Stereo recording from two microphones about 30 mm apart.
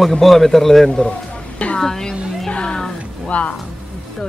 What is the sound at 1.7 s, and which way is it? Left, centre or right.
Speech, left.